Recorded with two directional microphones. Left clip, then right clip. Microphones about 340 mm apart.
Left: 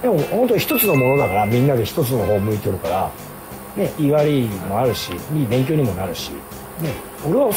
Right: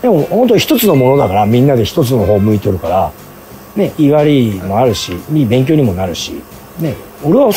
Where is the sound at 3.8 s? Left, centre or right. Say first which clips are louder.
Right 7 dB; right.